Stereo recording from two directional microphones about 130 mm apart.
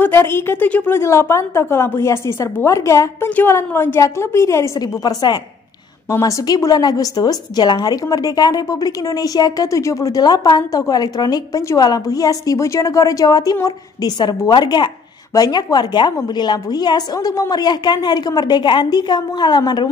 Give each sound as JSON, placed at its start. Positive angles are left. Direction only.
{"t": 0.0, "sound": "a woman's voice", "side_deg": 20}